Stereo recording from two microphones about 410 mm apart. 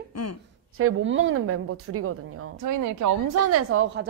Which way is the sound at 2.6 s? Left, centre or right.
Right.